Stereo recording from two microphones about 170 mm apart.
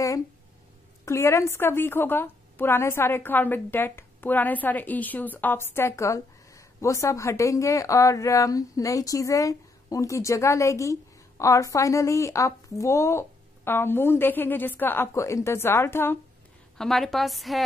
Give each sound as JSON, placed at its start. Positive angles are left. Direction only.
{"t": 1.0, "sound": "a woman's voice", "side_deg": 15}
{"t": 16.7, "sound": "a woman's voice", "side_deg": 0}